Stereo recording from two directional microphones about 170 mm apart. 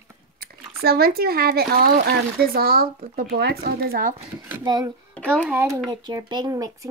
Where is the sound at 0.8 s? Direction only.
65° right (ahead or behind).